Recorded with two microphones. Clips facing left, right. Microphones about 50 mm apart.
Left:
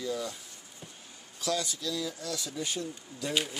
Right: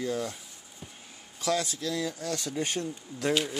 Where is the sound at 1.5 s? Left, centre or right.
Right.